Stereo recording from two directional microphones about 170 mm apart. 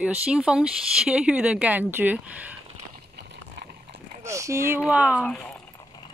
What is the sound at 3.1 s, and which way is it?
Horse, 75° right (ahead or behind).